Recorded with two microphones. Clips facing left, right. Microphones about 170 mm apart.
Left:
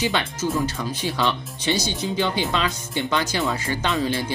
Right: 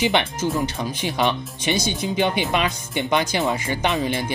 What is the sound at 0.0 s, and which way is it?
Speech, 20° right (ahead or behind).